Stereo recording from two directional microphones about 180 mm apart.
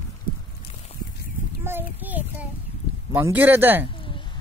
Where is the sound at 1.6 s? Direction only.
10° right (ahead or behind).